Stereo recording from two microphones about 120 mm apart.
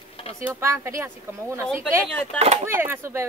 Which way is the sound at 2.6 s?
20° right (ahead or behind).